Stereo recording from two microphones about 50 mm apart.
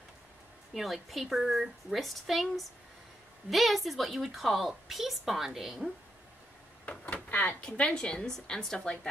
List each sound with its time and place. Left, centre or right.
0.7 s a woman's voice: centre
7.2 s a sound: left
7.6 s a woman's voice: left